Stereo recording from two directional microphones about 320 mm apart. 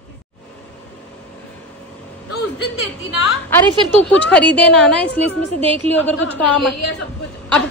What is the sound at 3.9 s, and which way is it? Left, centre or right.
A woman's voice, centre.